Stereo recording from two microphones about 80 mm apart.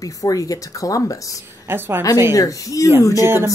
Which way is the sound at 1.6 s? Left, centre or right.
Right.